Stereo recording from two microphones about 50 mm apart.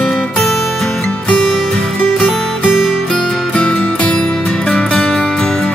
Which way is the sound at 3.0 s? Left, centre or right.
Centre.